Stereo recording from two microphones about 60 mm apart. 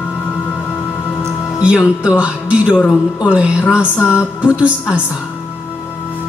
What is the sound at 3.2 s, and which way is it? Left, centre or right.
Speech, centre.